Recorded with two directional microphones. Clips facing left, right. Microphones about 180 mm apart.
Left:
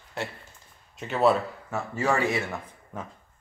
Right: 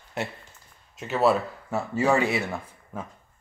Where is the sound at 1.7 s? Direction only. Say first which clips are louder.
Right 4 dB; 15° right (ahead or behind).